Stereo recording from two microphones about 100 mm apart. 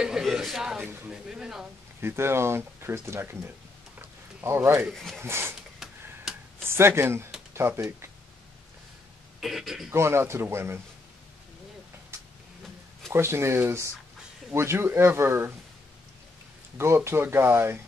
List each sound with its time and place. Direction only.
0.0 s speech: 5° right (ahead or behind)
2.0 s speech: 25° right (ahead or behind)
4.0 s a sound: 25° right (ahead or behind)
4.9 s speech: 5° left (ahead or behind)
5.2 s speech: 25° right (ahead or behind)
6.6 s speech: 25° right (ahead or behind)
9.4 s speech: centre (ahead or behind)
9.8 s speech: 25° right (ahead or behind)
13.1 s speech: 25° right (ahead or behind)
16.7 s speech: 25° right (ahead or behind)